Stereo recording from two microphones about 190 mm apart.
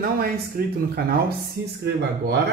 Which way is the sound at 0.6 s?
55° right (ahead or behind).